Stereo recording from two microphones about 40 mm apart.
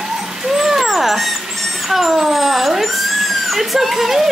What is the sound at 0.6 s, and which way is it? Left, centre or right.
A woman's voice, centre.